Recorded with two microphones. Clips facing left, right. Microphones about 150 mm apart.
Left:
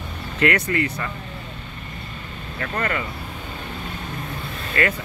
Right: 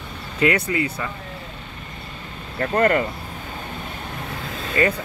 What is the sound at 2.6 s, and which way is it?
Speech, 45° right (ahead or behind).